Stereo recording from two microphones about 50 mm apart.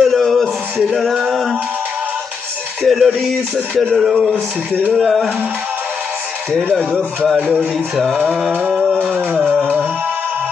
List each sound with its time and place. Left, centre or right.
0.0 s a sound: centre
1.2 s music: centre
2.8 s music: centre
3.9 s speech: centre
7.5 s music: centre
9.3 s music: right